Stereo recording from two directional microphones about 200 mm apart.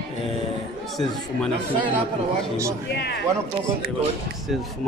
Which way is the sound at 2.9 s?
55° left (ahead or behind).